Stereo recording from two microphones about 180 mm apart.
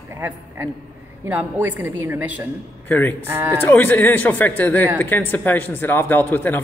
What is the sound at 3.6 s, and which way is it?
A man's voice, 10° left (ahead or behind).